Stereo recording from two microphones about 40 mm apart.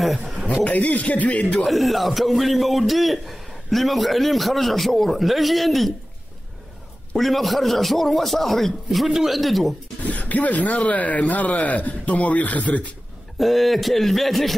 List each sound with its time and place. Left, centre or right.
0.7 s a man's voice: left
1.7 s a man's voice: centre
7.2 s a man's voice: centre
10.0 s a man's voice: left
13.4 s a man's voice: centre